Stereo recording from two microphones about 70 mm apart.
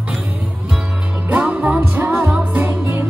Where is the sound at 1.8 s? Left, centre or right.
Right.